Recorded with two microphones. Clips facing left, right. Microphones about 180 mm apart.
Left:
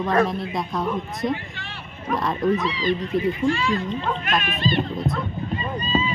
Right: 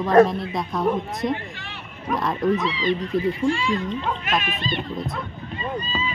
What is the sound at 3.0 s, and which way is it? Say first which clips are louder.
Speech: even; 20° left (ahead or behind).